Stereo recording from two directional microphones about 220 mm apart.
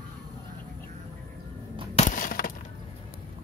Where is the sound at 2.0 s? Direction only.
35° left (ahead or behind).